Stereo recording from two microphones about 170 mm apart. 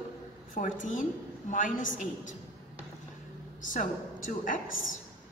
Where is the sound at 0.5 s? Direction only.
50° left (ahead or behind).